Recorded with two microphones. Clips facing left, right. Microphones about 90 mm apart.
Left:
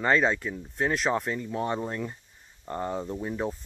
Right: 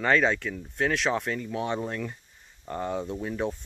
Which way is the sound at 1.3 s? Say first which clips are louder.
Even; 15° left (ahead or behind).